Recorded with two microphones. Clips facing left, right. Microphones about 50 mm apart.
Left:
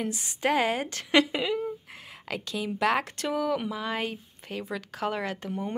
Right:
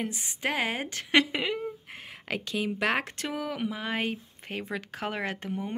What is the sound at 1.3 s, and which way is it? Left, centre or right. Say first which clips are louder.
A woman's voice: left 2 dB; right.